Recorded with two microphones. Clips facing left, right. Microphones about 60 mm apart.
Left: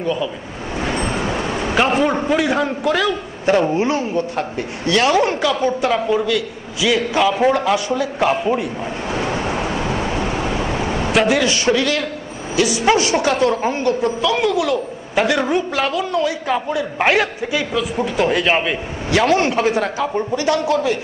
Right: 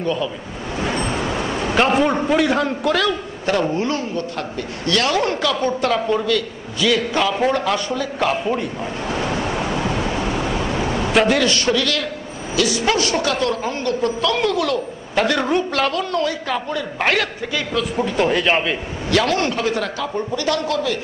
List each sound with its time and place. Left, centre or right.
0.0 s speech: centre
0.9 s a sound: left
1.8 s a man's voice: centre
3.6 s a woman's voice: centre
9.6 s a sound: centre
12.5 s a man's voice: left
14.2 s a woman's voice: centre
19.2 s a man's voice: left